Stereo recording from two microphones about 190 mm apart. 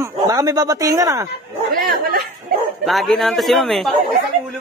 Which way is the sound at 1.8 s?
55° right (ahead or behind).